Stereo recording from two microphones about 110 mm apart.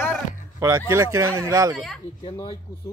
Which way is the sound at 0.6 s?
25° right (ahead or behind).